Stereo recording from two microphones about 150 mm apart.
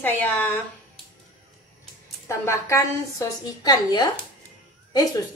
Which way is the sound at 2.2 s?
20° left (ahead or behind).